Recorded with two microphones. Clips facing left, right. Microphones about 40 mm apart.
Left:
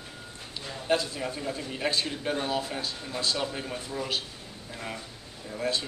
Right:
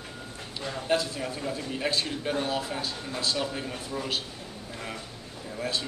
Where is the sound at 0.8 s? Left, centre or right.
Centre.